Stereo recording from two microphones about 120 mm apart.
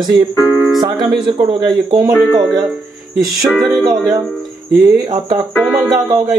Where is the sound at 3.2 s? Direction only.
Centre (ahead or behind).